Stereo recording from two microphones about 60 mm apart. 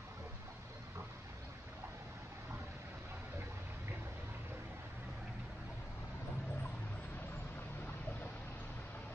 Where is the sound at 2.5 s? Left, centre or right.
Right.